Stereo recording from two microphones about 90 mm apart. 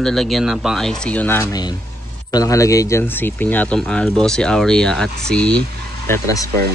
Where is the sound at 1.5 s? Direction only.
50° left (ahead or behind); by 5.5 s 10° left (ahead or behind).